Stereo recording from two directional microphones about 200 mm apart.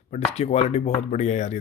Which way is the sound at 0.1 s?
35° left (ahead or behind).